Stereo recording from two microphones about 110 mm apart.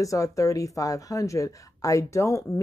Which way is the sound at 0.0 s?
30° left (ahead or behind).